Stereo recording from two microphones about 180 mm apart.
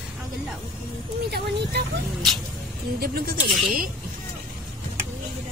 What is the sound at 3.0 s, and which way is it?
Speech, 60° right (ahead or behind).